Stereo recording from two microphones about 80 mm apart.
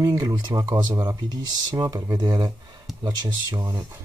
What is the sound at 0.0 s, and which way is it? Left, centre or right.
Speech, right.